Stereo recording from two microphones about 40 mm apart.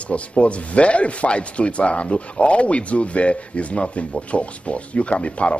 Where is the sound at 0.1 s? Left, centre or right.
Left.